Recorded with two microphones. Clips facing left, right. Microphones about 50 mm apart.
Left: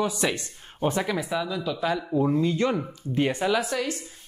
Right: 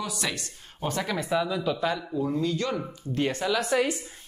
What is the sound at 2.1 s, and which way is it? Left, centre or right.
Speech, left.